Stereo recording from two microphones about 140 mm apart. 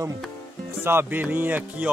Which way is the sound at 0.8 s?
15° right (ahead or behind).